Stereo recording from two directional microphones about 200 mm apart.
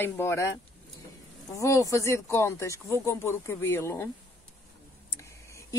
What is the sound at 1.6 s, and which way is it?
Speech, 15° left (ahead or behind).